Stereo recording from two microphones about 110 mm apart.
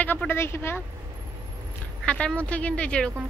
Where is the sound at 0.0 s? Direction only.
15° left (ahead or behind).